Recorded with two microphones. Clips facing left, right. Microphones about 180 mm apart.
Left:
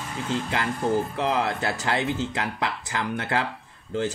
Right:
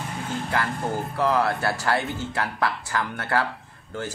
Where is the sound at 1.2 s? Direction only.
20° left (ahead or behind).